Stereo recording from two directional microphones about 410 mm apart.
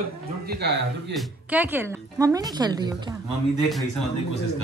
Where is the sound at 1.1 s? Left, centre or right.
Centre.